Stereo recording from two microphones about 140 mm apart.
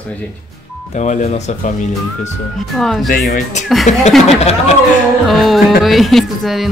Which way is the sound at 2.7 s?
Centre (ahead or behind).